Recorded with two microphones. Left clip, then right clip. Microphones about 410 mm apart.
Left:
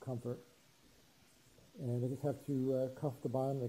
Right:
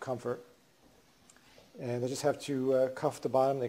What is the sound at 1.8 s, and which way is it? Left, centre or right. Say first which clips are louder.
Speech: right 8 dB; centre.